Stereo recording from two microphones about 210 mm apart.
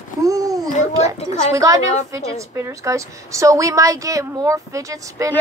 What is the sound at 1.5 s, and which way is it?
A woman's voice, 15° right (ahead or behind).